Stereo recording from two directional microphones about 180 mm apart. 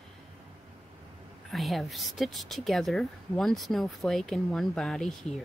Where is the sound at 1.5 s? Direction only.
Centre (ahead or behind).